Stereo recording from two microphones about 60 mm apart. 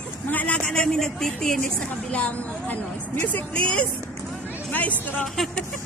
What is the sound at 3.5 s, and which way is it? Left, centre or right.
Speech, centre.